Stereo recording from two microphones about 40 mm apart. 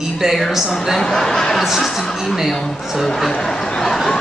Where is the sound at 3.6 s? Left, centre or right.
Centre.